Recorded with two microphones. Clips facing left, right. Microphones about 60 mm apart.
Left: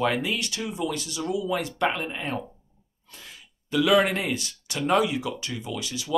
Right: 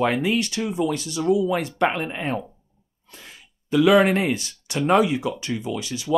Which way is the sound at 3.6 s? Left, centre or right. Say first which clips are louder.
Right 5 dB; right.